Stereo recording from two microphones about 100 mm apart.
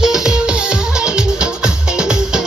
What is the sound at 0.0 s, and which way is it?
Music, 5° right (ahead or behind).